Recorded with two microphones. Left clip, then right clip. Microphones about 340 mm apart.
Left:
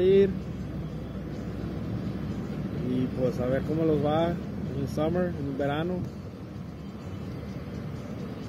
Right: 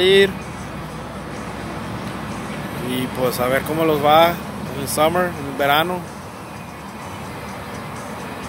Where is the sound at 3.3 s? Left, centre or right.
Right.